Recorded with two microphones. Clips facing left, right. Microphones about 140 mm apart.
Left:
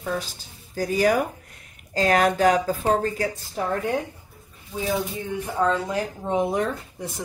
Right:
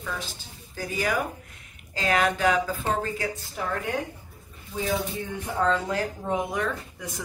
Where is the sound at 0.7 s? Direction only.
40° left (ahead or behind).